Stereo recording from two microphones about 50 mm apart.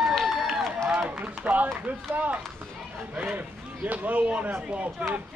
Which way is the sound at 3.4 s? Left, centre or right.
Right.